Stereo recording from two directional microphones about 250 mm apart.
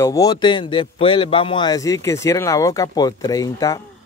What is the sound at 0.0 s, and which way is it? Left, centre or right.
Speech, centre.